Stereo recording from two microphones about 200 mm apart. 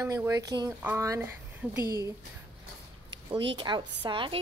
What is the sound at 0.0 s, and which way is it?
Speech, 15° right (ahead or behind).